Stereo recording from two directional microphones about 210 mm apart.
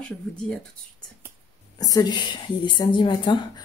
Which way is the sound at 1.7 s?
15° left (ahead or behind).